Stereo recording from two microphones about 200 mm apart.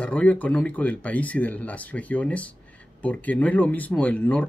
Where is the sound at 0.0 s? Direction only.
5° left (ahead or behind).